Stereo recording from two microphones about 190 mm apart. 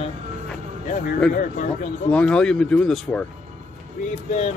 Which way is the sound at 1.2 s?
5° left (ahead or behind).